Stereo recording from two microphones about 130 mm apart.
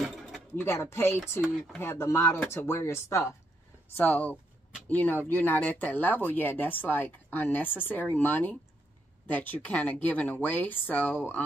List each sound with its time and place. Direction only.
0.6 s speech: 20° left (ahead or behind)
1.4 s speech: centre (ahead or behind)
1.8 s speech: 20° left (ahead or behind)